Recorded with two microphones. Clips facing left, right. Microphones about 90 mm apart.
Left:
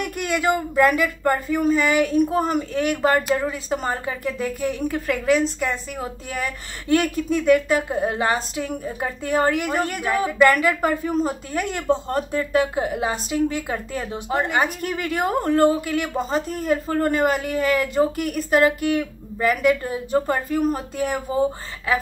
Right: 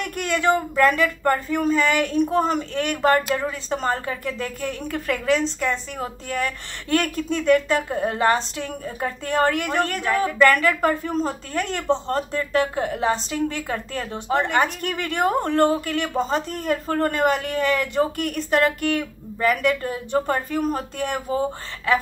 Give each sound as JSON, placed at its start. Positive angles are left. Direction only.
{"t": 0.0, "sound": "speech", "side_deg": 10}